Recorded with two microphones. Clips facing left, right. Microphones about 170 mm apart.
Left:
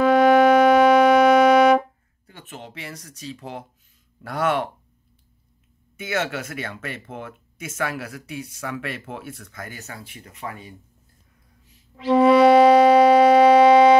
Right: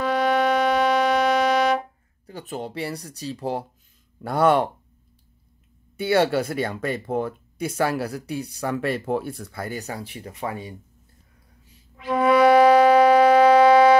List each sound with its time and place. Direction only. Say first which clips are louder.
0.0 s music: left 7 dB; 50° left (ahead or behind)
2.2 s speech: right 8 dB; 35° right (ahead or behind)
5.9 s speech: right 7 dB; 35° right (ahead or behind)
12.0 s music: left 3 dB; 30° left (ahead or behind)